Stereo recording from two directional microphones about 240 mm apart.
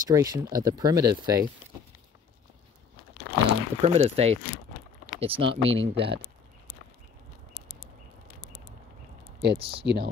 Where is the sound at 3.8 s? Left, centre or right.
Right.